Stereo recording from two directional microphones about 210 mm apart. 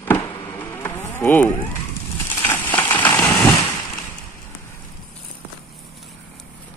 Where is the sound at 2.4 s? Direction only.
10° left (ahead or behind).